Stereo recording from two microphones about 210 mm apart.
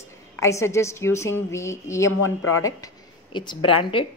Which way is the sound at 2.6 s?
20° left (ahead or behind).